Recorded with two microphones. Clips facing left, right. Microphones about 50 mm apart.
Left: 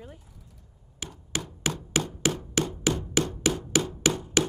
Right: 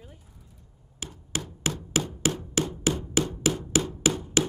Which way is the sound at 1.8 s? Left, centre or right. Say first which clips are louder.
Even; centre.